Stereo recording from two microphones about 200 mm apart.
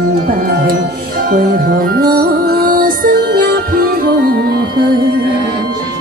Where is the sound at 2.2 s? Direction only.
50° right (ahead or behind).